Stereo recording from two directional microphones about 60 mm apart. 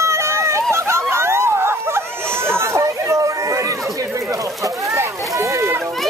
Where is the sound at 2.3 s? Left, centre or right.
Right.